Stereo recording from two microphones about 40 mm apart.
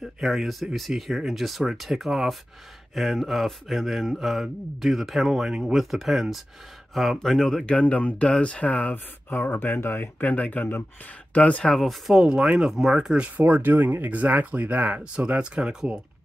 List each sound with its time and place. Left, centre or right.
0.2 s speech: centre
7.2 s speech: centre
7.8 s speech: left
8.9 s speech: left
10.4 s speech: left
11.6 s speech: centre
12.1 s speech: right
12.7 s speech: centre
13.2 s speech: right
15.2 s speech: right